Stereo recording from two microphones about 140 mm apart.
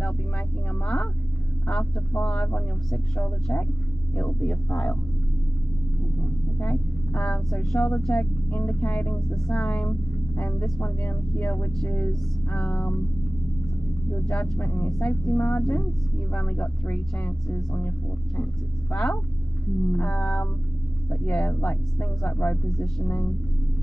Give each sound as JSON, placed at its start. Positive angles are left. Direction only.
{"t": 1.7, "sound": "speech", "side_deg": 5}
{"t": 6.6, "sound": "speech", "side_deg": 10}
{"t": 14.2, "sound": "speech", "side_deg": 5}
{"t": 14.9, "sound": "a woman's voice", "side_deg": 0}
{"t": 15.3, "sound": "speech", "side_deg": 15}